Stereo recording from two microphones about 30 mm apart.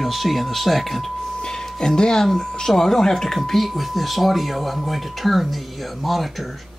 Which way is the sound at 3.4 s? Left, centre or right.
Centre.